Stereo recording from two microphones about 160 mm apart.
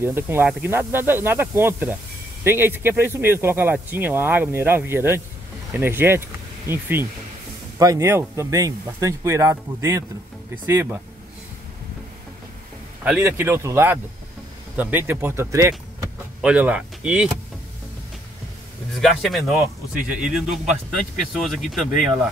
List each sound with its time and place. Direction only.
0.0 s speech: 15° right (ahead or behind)
13.0 s speech: 5° right (ahead or behind)
18.9 s speech: centre (ahead or behind)